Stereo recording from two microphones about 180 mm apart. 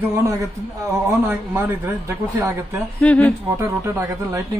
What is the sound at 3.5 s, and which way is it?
Speech, 15° right (ahead or behind).